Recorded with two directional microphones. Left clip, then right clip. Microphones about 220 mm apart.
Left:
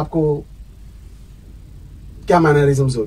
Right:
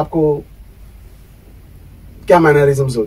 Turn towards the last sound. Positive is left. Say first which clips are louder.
# right 3 dB
turn(degrees=5)  # may be behind; listen again after turning